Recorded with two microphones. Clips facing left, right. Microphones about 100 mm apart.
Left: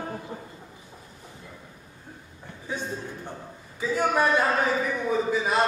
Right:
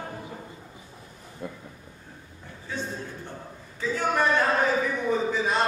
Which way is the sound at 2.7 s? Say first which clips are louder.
Left 1 dB; 15° left (ahead or behind).